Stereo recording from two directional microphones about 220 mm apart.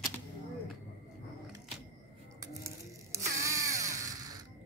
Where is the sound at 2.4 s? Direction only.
15° right (ahead or behind).